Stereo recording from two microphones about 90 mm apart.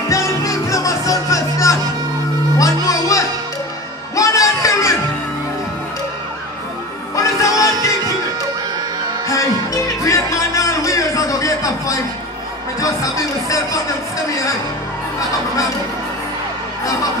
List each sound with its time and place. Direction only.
0.1 s music: 35° left (ahead or behind)
7.2 s music: 40° left (ahead or behind)
10.0 s a sound: 40° left (ahead or behind)
12.8 s music: 35° left (ahead or behind)
15.1 s honk: 40° left (ahead or behind)